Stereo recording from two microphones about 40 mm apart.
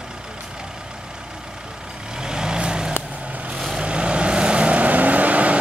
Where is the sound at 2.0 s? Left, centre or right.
Centre.